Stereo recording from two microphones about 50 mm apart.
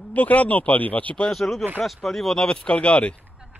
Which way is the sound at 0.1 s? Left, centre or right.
Left.